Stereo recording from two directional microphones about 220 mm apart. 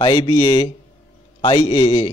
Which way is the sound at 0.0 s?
20° left (ahead or behind).